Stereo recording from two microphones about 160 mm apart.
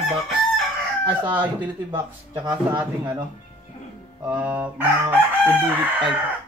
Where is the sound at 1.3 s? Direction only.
10° right (ahead or behind).